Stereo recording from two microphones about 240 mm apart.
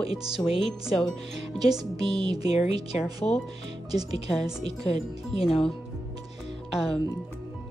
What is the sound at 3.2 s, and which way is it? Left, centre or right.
Speech, centre.